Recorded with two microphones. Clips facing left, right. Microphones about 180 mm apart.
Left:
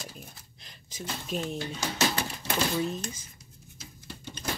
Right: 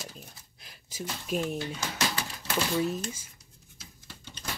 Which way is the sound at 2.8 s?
5° right (ahead or behind).